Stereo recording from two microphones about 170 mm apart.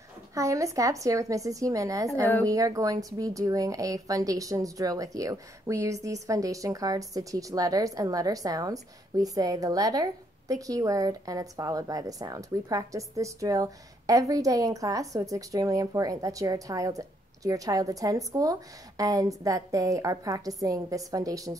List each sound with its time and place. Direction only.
0.3 s a woman's voice: 20° right (ahead or behind)